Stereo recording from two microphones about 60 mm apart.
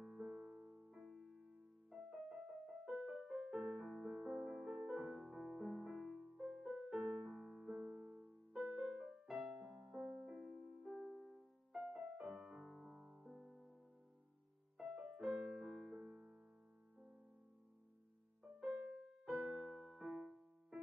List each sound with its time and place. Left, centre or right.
0.0 s music: centre
0.7 s music: right
0.9 s music: centre
3.2 s music: centre; by 4.6 s right
4.6 s music: centre
9.3 s music: centre
10.0 s music: centre
11.7 s music: centre
14.8 s music: centre
19.2 s music: centre